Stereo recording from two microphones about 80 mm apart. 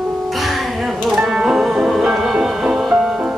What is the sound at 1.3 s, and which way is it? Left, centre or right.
Music, centre.